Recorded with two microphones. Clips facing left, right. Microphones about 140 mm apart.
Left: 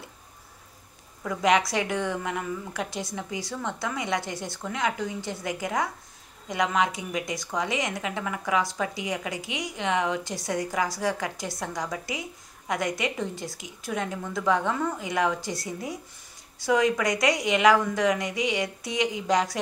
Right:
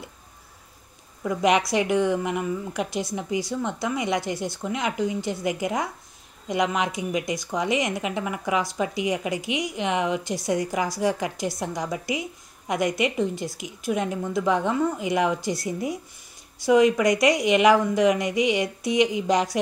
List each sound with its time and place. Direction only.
1.2 s a woman's voice: 15° right (ahead or behind)